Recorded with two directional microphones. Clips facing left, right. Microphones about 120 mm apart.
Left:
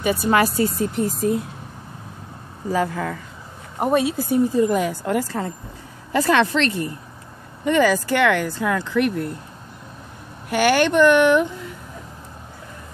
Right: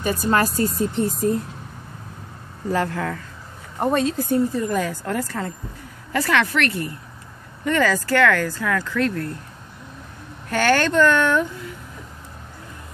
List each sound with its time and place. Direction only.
0.3 s speech: 5° left (ahead or behind)
2.7 s a woman's voice: 10° left (ahead or behind)
10.5 s speech: 15° left (ahead or behind)